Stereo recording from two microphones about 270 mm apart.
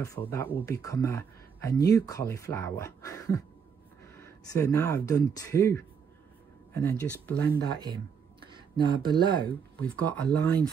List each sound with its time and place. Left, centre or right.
0.0 s speech: centre
4.5 s speech: centre
7.7 s speech: centre
9.8 s speech: centre